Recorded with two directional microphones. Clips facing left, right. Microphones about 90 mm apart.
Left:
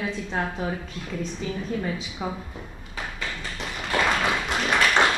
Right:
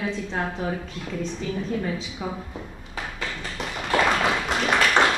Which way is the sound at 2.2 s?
15° left (ahead or behind).